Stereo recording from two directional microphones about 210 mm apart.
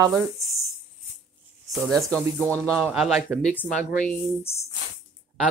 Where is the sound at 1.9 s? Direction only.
5° left (ahead or behind).